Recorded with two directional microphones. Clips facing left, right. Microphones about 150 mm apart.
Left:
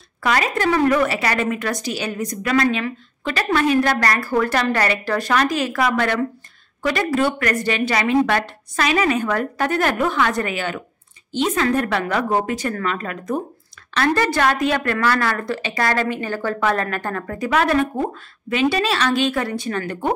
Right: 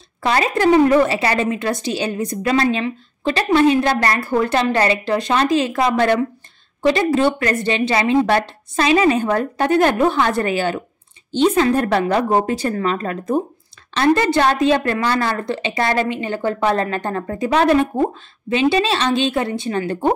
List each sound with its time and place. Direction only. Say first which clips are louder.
0.2 s a woman's voice: right 3 dB; 30° right (ahead or behind)